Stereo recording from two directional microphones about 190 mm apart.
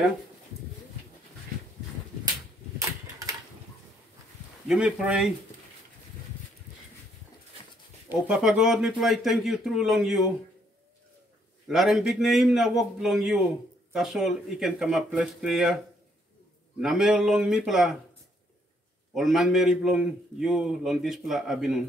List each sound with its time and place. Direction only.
4.6 s a man's voice: 5° right (ahead or behind)
8.1 s a man's voice: 5° right (ahead or behind)
11.6 s a man's voice: centre (ahead or behind)
16.8 s a man's voice: centre (ahead or behind)
19.1 s a man's voice: centre (ahead or behind)